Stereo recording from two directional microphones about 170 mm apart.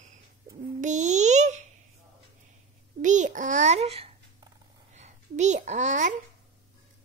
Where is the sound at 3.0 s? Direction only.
45° right (ahead or behind).